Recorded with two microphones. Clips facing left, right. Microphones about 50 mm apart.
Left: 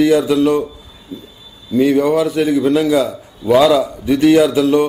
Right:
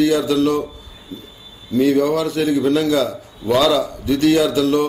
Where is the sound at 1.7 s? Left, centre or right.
Centre.